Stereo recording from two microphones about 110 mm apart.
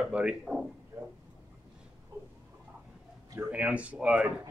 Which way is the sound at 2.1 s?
25° right (ahead or behind).